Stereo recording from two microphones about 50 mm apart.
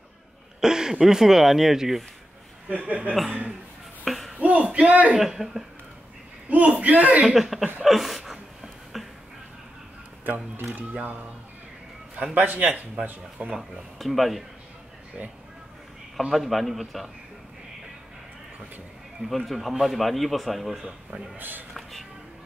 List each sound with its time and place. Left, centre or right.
0.6 s speech: centre
2.7 s speech: right
4.0 s a sound: centre
4.4 s speech: right
5.1 s speech: centre
6.5 s speech: right
7.3 s speech: centre
8.9 s a sound: centre
10.7 s speech: right
12.4 s speech: right
13.9 s speech: centre
16.2 s speech: centre
19.2 s speech: centre
21.4 s speech: right